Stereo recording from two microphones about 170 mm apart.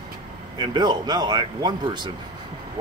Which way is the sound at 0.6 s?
25° right (ahead or behind).